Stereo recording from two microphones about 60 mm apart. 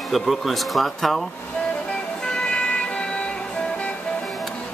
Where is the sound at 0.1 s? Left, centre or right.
Centre.